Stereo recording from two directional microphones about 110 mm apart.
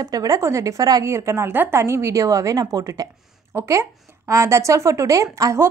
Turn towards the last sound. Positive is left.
turn(degrees=-30)  # may be behind; listen again after turning